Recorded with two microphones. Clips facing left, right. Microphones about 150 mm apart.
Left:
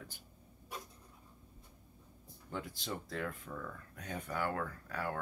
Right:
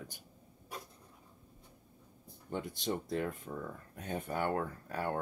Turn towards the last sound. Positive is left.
turn(degrees=-30)  # may be behind; listen again after turning